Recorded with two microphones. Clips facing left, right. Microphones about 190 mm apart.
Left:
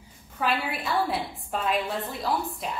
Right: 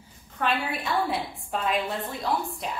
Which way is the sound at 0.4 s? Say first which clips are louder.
Even; centre (ahead or behind).